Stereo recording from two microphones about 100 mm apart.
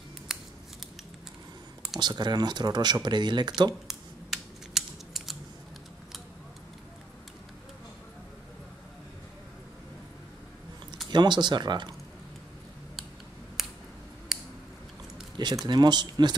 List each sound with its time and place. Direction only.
0.3 s scissors: 5° right (ahead or behind)
2.0 s speech: 45° right (ahead or behind)
3.8 s scissors: 5° right (ahead or behind)
11.1 s speech: 50° right (ahead or behind)
13.6 s a sound: centre (ahead or behind)
14.3 s scissors: 5° right (ahead or behind)
15.6 s speech: 45° right (ahead or behind)